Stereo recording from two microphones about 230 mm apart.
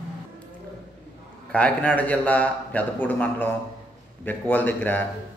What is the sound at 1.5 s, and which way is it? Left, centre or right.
A man's voice, centre.